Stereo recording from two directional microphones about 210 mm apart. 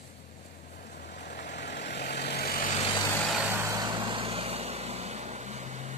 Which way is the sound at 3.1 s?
5° left (ahead or behind).